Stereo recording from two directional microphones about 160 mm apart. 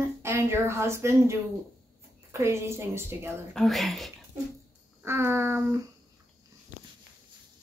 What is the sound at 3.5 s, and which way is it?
Speech, centre (ahead or behind).